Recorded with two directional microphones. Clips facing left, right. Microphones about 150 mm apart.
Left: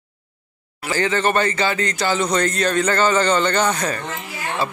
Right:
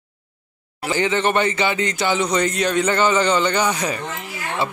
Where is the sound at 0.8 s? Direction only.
20° right (ahead or behind).